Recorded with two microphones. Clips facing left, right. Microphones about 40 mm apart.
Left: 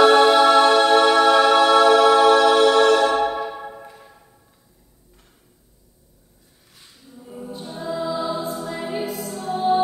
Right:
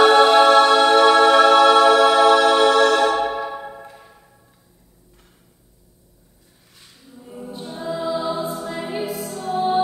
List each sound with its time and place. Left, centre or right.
0.0 s music: centre
6.8 s choir: centre
8.0 s music: centre